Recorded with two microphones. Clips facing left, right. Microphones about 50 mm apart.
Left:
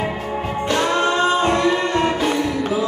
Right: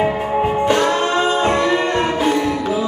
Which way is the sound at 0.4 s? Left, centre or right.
Right.